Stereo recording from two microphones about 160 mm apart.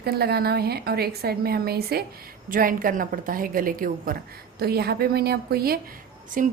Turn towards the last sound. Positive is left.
turn(degrees=-65)  # may be behind; listen again after turning